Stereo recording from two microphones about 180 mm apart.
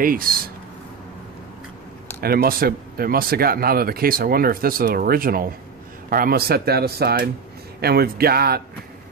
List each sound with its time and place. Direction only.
0.0 s speech: 55° right (ahead or behind)
2.2 s speech: 55° right (ahead or behind)